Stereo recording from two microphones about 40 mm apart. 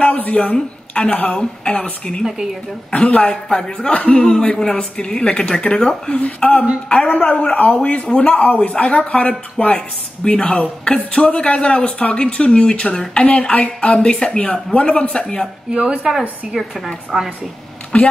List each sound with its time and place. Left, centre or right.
0.0 s a sound: left
1.1 s a woman's voice: left
1.4 s speech: left
2.9 s a woman's voice: left
6.1 s a woman's voice: left
7.8 s speech: left
8.3 s a woman's voice: left
8.5 s speech: left
9.8 s speech: left
15.7 s a woman's voice: right
16.1 s a woman's voice: centre
17.9 s a woman's voice: left